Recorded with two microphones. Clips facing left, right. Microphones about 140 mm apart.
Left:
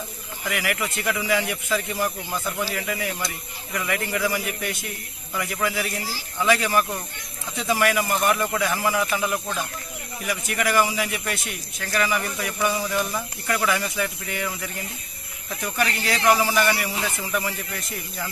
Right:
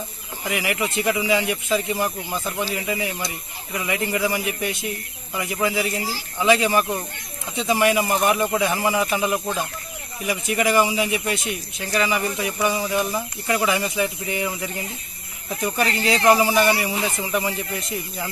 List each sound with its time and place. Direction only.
0.4 s speech: 20° right (ahead or behind)
10.3 s speech: 20° right (ahead or behind)
15.8 s speech: 30° right (ahead or behind)